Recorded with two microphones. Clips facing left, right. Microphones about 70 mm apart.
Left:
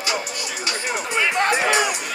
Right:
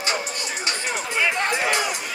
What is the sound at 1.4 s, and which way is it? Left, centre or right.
Music, left.